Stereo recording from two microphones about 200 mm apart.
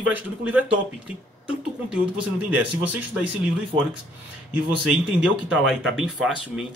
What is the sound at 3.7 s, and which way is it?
Speech, 25° right (ahead or behind).